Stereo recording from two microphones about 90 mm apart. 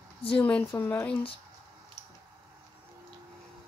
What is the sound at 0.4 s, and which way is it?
Speech, 15° left (ahead or behind).